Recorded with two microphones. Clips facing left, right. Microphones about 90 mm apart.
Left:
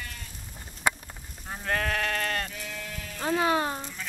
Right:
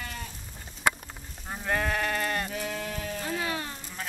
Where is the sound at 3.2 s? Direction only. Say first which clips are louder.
Left 10 dB; 45° left (ahead or behind).